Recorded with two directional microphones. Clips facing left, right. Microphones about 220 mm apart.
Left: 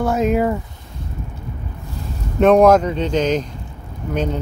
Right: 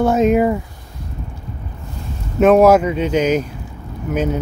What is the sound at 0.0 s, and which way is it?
Speech, 20° right (ahead or behind).